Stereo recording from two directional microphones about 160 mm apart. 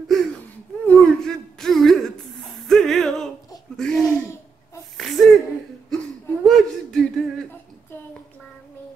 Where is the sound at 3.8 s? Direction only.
5° left (ahead or behind).